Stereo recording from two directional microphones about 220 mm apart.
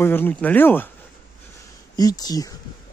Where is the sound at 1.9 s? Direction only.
15° left (ahead or behind).